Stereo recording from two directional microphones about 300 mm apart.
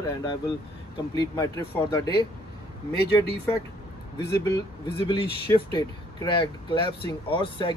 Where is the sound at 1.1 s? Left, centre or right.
Centre.